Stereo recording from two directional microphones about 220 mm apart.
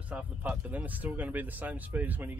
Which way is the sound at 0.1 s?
5° right (ahead or behind).